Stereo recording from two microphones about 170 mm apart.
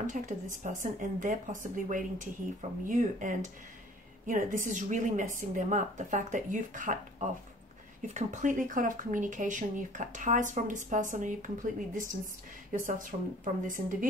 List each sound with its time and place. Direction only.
0.0 s speech: 45° right (ahead or behind)